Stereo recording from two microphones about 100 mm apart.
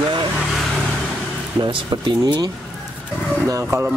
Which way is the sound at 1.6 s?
55° right (ahead or behind).